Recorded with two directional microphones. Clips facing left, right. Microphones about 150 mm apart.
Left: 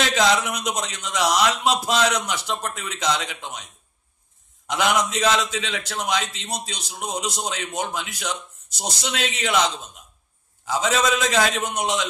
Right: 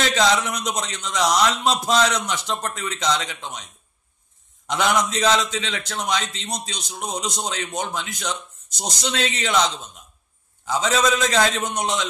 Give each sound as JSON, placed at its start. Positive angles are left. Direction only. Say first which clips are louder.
{"t": 0.1, "sound": "a man's voice", "louder": "even", "side_deg": 5}
{"t": 4.6, "sound": "a man's voice", "louder": "right 1 dB", "side_deg": 5}